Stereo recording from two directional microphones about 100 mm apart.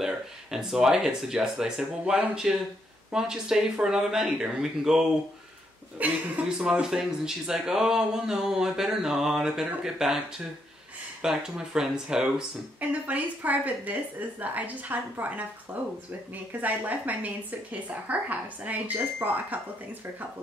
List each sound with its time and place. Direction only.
0.0 s speech: 5° right (ahead or behind)
11.2 s a woman's voice: 5° right (ahead or behind)